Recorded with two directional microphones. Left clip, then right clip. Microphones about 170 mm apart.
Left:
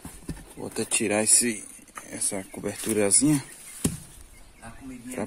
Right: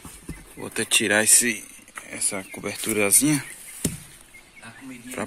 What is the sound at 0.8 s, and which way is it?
Speech, 5° left (ahead or behind).